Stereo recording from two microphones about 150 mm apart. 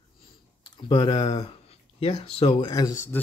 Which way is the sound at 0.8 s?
30° left (ahead or behind).